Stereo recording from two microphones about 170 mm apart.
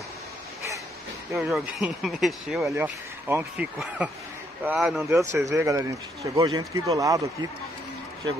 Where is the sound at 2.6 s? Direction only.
15° right (ahead or behind).